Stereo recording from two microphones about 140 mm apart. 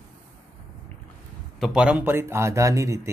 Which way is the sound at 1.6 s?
5° right (ahead or behind).